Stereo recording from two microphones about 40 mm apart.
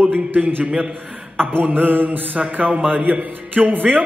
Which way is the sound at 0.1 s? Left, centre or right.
Right.